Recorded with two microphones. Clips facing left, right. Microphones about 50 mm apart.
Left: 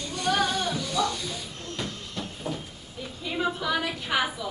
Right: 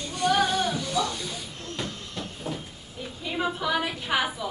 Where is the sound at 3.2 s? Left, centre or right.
Centre.